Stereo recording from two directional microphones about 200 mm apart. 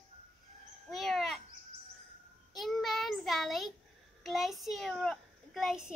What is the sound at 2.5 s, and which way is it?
Child singing, centre (ahead or behind).